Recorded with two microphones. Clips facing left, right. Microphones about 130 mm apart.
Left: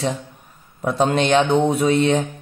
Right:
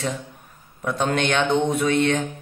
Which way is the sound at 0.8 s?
35° left (ahead or behind).